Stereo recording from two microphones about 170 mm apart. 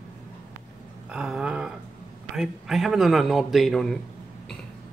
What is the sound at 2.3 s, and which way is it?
Speech, centre (ahead or behind).